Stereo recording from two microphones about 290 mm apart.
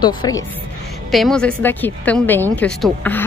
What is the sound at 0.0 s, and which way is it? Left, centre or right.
Speech, centre.